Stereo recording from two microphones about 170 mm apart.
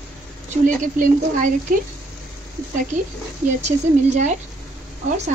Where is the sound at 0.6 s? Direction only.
50° right (ahead or behind).